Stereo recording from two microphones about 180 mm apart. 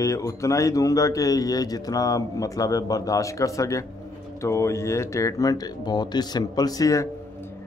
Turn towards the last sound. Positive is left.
turn(degrees=20)  # may be behind; listen again after turning